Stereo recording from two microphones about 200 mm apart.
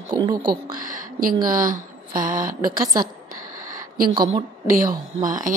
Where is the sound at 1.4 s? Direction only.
45° right (ahead or behind).